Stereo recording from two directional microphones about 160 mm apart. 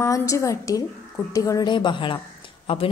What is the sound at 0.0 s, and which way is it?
A woman's voice, 20° left (ahead or behind).